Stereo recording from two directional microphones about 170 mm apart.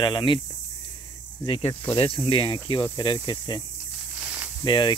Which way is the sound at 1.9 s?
30° left (ahead or behind).